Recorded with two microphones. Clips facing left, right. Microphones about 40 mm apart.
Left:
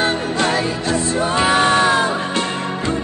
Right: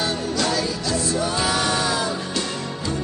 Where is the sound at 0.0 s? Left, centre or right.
Left.